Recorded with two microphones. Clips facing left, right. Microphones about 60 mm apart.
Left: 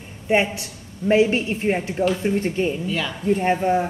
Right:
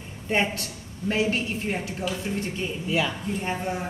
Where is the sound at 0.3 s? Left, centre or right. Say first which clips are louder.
Left 5 dB; centre.